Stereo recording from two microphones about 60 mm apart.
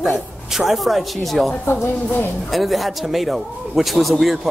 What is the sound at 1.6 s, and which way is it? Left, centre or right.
Speech, left.